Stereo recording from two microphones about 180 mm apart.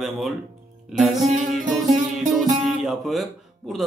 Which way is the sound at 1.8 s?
40° right (ahead or behind).